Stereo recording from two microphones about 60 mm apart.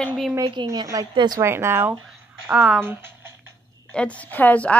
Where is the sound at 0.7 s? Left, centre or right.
Right.